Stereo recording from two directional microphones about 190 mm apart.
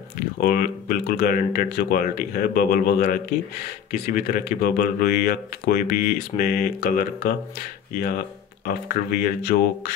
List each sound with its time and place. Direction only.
0.4 s speech: 50° left (ahead or behind)
8.6 s speech: 50° left (ahead or behind)